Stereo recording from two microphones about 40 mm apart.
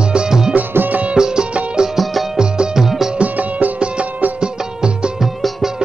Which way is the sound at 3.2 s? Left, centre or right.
Right.